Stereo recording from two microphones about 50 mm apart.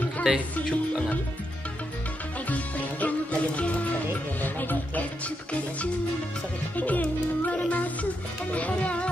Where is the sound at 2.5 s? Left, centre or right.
Left.